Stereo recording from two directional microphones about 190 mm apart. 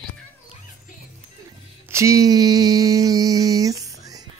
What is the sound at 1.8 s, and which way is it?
Mantra, 15° right (ahead or behind).